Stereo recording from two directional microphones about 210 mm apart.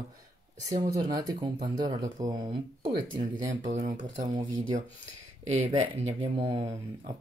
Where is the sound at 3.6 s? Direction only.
35° right (ahead or behind).